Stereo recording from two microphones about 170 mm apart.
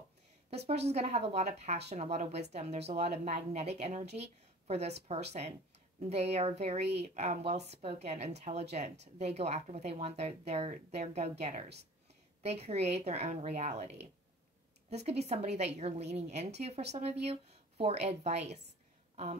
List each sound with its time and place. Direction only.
0.8 s a woman's voice: 40° right (ahead or behind)